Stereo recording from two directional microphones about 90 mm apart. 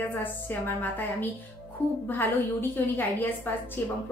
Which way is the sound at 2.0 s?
20° left (ahead or behind).